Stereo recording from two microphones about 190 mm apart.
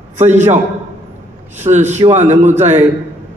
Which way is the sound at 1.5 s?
35° right (ahead or behind).